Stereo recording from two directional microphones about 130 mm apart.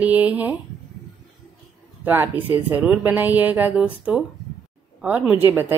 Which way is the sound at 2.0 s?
15° right (ahead or behind).